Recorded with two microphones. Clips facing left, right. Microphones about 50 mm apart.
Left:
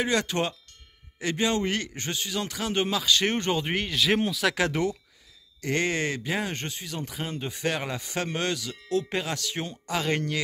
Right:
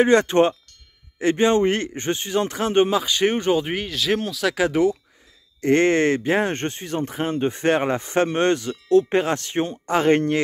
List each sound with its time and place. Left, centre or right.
0.0 s a man's voice: right; by 4.6 s centre
4.6 s speech: centre
5.6 s speech: right